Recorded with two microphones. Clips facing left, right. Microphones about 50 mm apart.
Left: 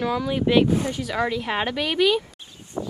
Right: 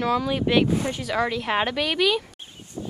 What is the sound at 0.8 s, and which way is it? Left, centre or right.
Speech, right.